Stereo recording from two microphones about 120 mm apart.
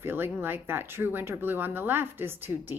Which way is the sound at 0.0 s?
20° right (ahead or behind).